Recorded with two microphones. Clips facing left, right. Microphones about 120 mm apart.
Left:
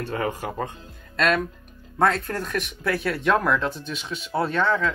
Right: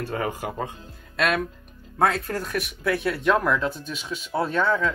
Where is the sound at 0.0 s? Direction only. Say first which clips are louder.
Left 1 dB; 5° right (ahead or behind).